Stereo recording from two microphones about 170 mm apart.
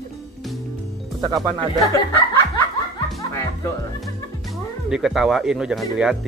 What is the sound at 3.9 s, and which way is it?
Speech, centre (ahead or behind).